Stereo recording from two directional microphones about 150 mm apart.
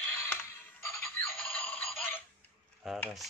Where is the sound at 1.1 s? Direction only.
10° left (ahead or behind).